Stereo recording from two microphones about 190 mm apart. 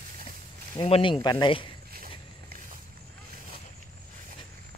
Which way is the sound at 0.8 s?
25° left (ahead or behind).